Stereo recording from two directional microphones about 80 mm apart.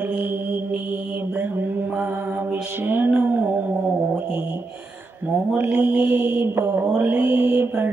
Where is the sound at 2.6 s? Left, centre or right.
Right.